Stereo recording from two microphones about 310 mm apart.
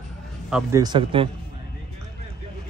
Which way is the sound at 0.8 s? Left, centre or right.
Centre.